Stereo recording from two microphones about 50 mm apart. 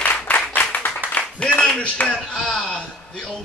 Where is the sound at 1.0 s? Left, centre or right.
Right.